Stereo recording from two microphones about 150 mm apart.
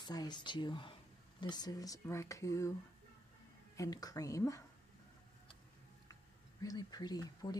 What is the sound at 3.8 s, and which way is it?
Speech, 25° left (ahead or behind).